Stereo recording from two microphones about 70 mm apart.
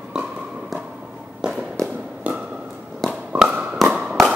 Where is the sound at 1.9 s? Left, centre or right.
Right.